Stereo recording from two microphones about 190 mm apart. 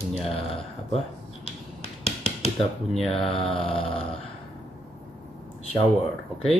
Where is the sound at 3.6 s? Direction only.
30° left (ahead or behind).